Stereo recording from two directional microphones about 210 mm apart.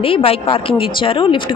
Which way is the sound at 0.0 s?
25° left (ahead or behind).